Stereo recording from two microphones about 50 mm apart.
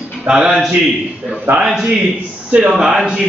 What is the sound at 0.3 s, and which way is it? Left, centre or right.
Speech, centre.